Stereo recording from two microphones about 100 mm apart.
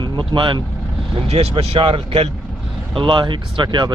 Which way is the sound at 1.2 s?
90° right.